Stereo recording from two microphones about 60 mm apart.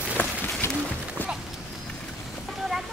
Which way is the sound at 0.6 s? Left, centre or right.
Left.